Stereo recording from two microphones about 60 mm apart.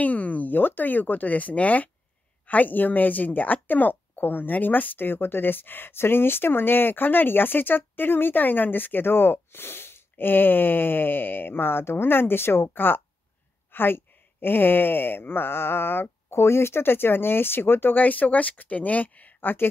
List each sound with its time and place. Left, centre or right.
0.0 s a woman's voice: left